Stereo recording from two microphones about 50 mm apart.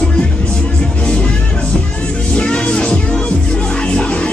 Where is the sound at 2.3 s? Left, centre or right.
Left.